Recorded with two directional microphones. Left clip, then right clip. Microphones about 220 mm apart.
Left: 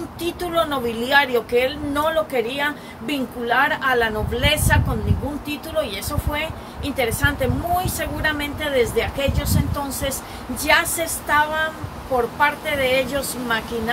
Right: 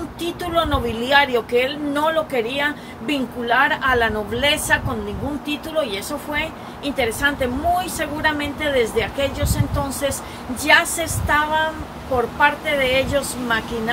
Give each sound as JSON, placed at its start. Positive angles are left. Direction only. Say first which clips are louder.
{"t": 0.2, "sound": "speech", "louder": "even", "side_deg": 0}